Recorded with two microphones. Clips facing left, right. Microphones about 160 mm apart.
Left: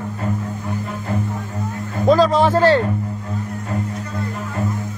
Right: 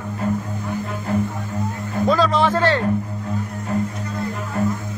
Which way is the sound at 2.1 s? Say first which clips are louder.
Left 4 dB; 40° left (ahead or behind).